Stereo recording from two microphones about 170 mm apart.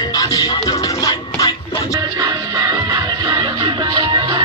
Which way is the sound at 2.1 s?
20° right (ahead or behind).